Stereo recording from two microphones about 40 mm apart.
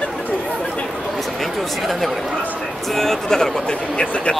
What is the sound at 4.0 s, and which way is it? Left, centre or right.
Speech, left.